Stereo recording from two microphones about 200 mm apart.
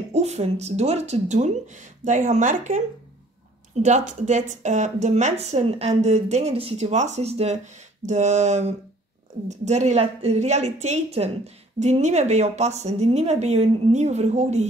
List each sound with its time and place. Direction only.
0.1 s a woman's voice: 35° right (ahead or behind)
3.8 s a woman's voice: 35° right (ahead or behind)